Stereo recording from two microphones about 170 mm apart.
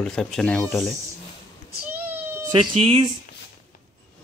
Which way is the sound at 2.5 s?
35° right (ahead or behind).